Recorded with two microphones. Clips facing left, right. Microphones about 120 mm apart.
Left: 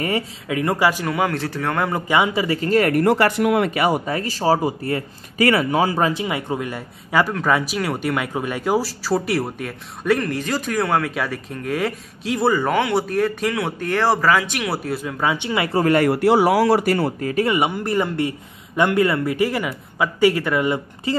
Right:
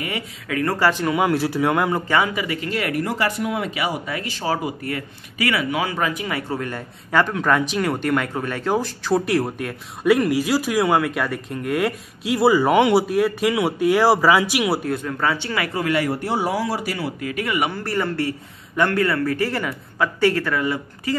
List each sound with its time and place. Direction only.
0.5 s speech: 20° left (ahead or behind)
1.0 s speech: 5° right (ahead or behind)
2.0 s speech: 15° left (ahead or behind)
2.3 s speech: 35° left (ahead or behind)
3.1 s speech: 65° left (ahead or behind); by 13.0 s 15° right (ahead or behind)
13.1 s speech: 5° right (ahead or behind)
14.8 s speech: 5° left (ahead or behind); by 15.7 s 20° left (ahead or behind)
15.7 s speech: 40° left (ahead or behind)
16.1 s speech: 90° left; by 17.3 s 50° left (ahead or behind)
17.3 s speech: 30° left (ahead or behind)